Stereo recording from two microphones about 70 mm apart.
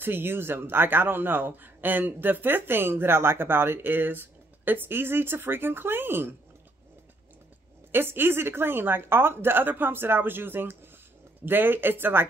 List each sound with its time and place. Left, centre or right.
0.0 s a man's voice: right
7.9 s a man's voice: right